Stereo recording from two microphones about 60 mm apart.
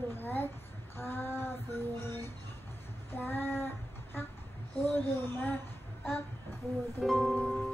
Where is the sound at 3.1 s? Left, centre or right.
Left.